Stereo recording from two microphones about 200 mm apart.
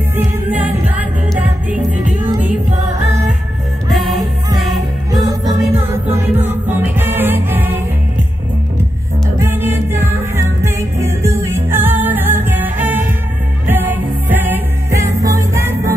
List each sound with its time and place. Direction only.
0.5 s music: 10° right (ahead or behind)
5.2 s music: 20° right (ahead or behind)
9.4 s music: 10° right (ahead or behind)